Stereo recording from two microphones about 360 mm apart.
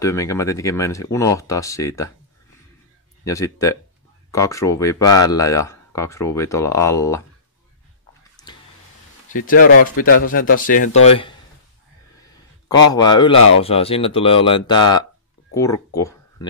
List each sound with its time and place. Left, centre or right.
0.0 s speech: centre
3.3 s speech: centre
8.4 s a sound: centre
9.3 s speech: left
12.6 s speech: centre
15.5 s a sound: centre